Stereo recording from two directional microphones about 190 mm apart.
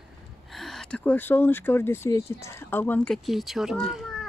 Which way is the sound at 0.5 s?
Centre (ahead or behind).